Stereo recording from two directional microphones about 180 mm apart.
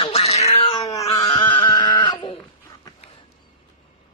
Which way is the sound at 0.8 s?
20° left (ahead or behind).